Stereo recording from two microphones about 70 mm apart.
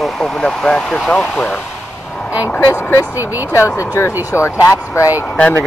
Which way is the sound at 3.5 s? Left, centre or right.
Left.